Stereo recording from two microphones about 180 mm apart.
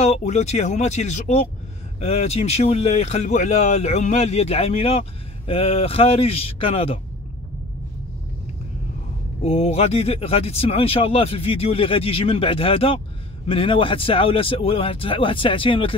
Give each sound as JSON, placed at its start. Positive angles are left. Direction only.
{"t": 0.0, "sound": "speech", "side_deg": 35}
{"t": 9.4, "sound": "speech", "side_deg": 35}